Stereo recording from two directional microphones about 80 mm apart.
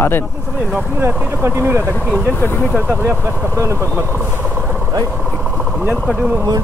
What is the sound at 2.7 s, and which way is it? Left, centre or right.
Speech, right.